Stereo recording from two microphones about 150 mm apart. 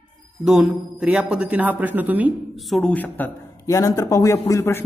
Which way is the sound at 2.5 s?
Centre (ahead or behind).